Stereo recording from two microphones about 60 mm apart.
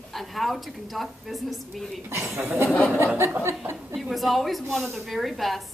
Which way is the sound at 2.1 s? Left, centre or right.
Right.